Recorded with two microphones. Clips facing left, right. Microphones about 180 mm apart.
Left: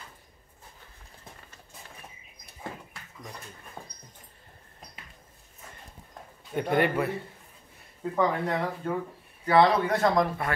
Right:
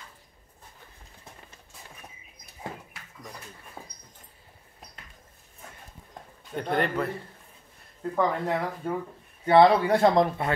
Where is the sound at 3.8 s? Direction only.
5° right (ahead or behind).